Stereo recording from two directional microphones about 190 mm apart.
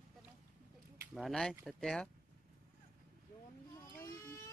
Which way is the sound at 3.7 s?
15° left (ahead or behind).